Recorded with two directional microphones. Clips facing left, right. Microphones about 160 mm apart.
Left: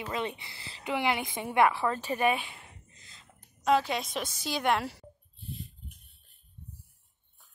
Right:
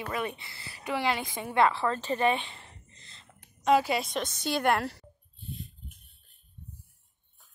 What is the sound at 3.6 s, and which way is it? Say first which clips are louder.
A woman's voice: right 2 dB; 5° right (ahead or behind).